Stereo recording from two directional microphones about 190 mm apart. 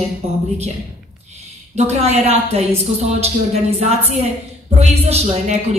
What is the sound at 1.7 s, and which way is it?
A woman's voice, 35° right (ahead or behind).